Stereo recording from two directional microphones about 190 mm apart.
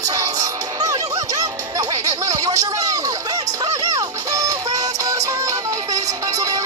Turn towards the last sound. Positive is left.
turn(degrees=-20)  # may be behind; listen again after turning